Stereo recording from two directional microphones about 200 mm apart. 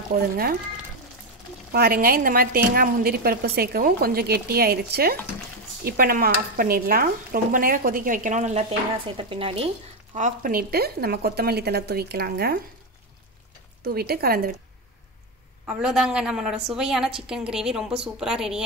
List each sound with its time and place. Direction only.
0.1 s a woman's voice: 45° right (ahead or behind)
1.7 s a woman's voice: 50° right (ahead or behind); by 9.7 s 25° right (ahead or behind)
10.1 s a woman's voice: 40° right (ahead or behind)
13.8 s a woman's voice: 50° right (ahead or behind)
15.6 s a woman's voice: 5° right (ahead or behind)